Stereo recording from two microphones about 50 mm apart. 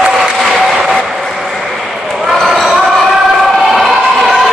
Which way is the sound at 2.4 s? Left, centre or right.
Centre.